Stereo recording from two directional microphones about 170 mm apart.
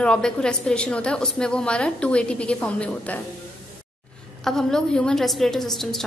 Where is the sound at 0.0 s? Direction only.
5° left (ahead or behind).